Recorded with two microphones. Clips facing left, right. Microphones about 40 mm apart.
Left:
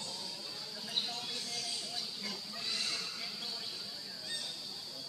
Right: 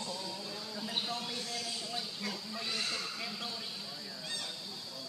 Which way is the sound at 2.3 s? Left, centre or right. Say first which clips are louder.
Right 1 dB; right.